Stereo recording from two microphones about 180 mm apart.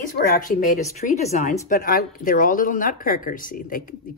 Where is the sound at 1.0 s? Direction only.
40° left (ahead or behind).